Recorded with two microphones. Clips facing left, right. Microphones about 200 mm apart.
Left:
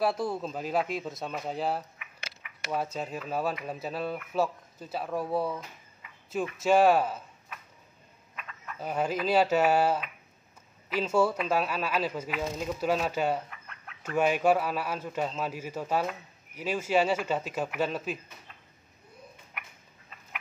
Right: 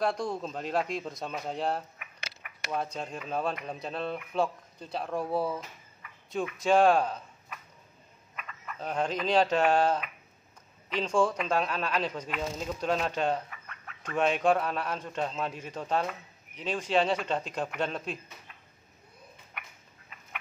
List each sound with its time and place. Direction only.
0.0 s speech: 5° left (ahead or behind)
6.0 s a sound: 20° left (ahead or behind)
6.6 s speech: 5° left (ahead or behind)
19.6 s dog: centre (ahead or behind)